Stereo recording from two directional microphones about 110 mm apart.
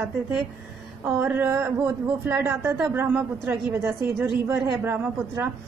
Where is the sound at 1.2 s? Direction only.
15° right (ahead or behind).